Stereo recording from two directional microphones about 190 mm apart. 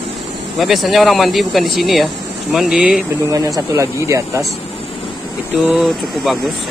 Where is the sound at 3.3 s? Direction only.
15° right (ahead or behind).